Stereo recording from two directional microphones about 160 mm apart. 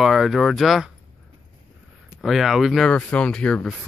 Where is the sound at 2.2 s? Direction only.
Centre (ahead or behind).